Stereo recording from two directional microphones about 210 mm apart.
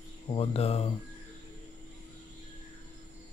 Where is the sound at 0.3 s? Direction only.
25° left (ahead or behind).